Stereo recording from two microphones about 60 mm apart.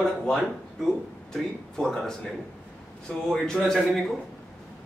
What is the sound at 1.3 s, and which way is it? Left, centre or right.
Speech, centre.